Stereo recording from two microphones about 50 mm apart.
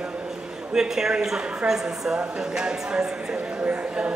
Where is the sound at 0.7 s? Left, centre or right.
Centre.